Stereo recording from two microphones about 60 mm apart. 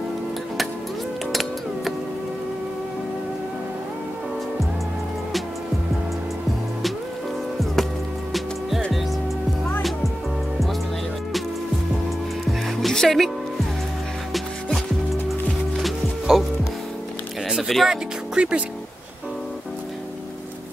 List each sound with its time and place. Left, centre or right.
1.3 s music: centre
8.3 s music: centre
12.4 s music: centre
15.8 s music: centre
17.5 s music: centre
17.8 s speech: centre